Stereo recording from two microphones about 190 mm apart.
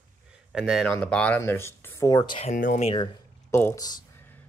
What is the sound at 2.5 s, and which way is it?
Speech, 45° left (ahead or behind).